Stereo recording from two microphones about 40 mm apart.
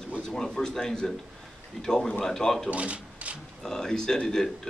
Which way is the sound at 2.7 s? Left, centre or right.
Right.